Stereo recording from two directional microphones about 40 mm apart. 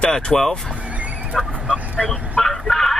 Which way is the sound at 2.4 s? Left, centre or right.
Centre.